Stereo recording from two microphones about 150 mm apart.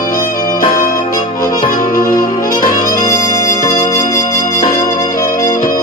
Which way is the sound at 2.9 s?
20° left (ahead or behind).